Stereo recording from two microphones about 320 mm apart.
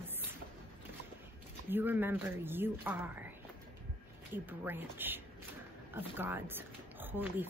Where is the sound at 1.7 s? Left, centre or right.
Centre.